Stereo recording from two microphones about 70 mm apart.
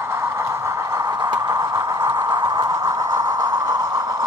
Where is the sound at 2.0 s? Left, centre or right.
Right.